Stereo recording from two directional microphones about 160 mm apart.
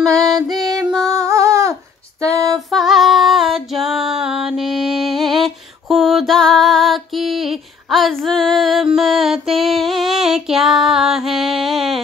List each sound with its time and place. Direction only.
0.5 s music: 25° right (ahead or behind)
1.0 s female singing: 20° right (ahead or behind)
2.5 s female singing: centre (ahead or behind)